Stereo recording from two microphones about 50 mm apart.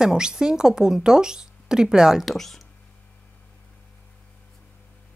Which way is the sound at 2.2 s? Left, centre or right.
Centre.